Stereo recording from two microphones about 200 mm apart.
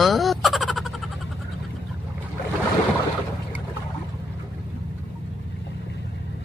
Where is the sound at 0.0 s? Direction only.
Centre (ahead or behind).